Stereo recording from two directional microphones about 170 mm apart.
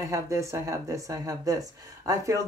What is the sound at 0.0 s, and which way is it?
Speech, 20° right (ahead or behind).